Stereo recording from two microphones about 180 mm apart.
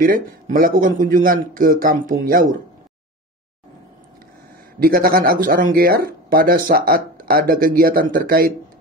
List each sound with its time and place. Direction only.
0.0 s speech: 50° right (ahead or behind)
4.7 s speech: 55° right (ahead or behind)